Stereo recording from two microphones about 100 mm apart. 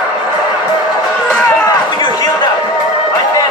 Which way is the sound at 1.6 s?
45° left (ahead or behind).